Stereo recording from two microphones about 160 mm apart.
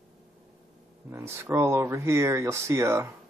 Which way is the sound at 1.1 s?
15° right (ahead or behind).